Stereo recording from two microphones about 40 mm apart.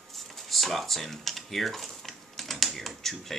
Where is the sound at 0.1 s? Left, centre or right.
Centre.